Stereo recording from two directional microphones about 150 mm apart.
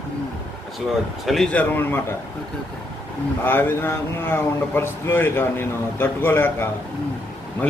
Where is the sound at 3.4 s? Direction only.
15° left (ahead or behind).